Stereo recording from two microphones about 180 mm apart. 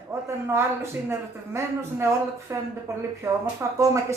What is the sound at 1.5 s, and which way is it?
Speech, 15° right (ahead or behind).